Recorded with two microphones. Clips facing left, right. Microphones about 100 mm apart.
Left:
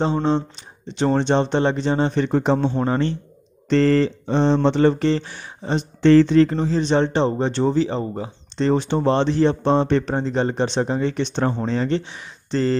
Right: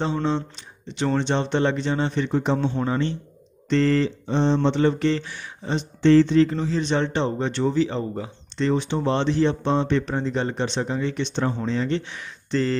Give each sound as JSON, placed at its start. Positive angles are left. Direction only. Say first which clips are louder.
{"t": 0.0, "sound": "speech", "louder": "left 4 dB", "side_deg": 40}
{"t": 6.0, "sound": "speech", "louder": "left 3 dB", "side_deg": 60}
{"t": 6.7, "sound": "speech", "louder": "left 4 dB", "side_deg": 35}
{"t": 12.0, "sound": "speech", "louder": "even", "side_deg": 30}